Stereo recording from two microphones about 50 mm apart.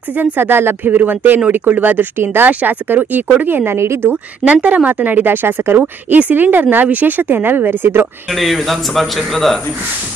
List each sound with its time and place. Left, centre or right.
0.1 s speech: right
3.7 s a woman's voice: right
4.1 s speech: right
5.8 s speech: right
8.3 s speech: centre